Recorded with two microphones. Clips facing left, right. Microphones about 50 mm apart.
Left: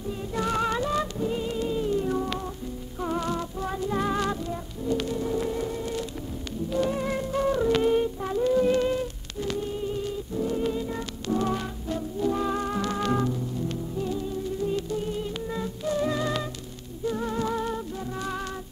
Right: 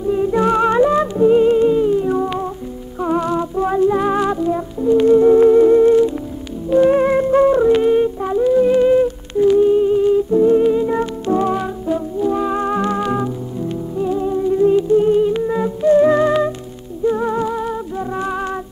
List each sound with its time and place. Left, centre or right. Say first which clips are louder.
0.1 s humming: right 13 dB; right
1.1 s music: right 17 dB; right
3.9 s music: right 10 dB; right
8.5 s humming: right 13 dB; centre
10.7 s music: right 14 dB; right
11.5 s music: right 11 dB; centre
12.5 s music: right 10 dB; right
13.0 s music: right 6 dB; centre
14.1 s music: right 13 dB; right
17.5 s music: right 7 dB; centre
17.9 s music: right 10 dB; right